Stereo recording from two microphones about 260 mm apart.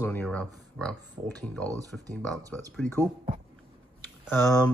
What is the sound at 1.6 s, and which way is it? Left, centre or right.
Speech, centre.